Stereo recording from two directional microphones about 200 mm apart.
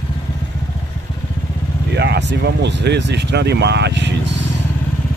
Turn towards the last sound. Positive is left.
turn(degrees=-60)  # may be behind; listen again after turning